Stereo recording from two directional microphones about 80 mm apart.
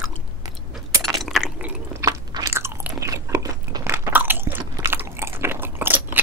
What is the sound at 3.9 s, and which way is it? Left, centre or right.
Biting, right.